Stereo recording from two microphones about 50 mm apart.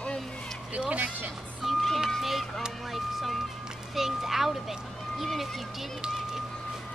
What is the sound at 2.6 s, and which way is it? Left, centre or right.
Vehicle, centre.